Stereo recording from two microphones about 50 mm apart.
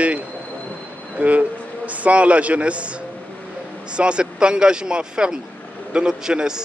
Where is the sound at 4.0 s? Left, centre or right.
Right.